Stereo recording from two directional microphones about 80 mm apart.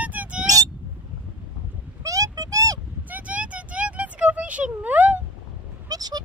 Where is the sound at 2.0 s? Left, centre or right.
Right.